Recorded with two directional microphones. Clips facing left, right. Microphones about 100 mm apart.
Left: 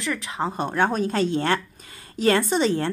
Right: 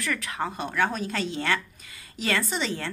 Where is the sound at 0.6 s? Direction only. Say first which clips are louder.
Left 5 dB; 45° left (ahead or behind).